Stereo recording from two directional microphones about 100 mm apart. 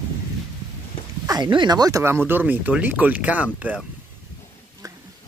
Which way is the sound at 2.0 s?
25° right (ahead or behind).